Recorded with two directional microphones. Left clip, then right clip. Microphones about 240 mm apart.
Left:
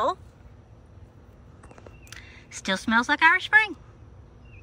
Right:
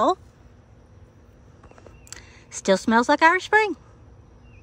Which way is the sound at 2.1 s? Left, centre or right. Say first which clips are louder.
Right 2 dB; centre.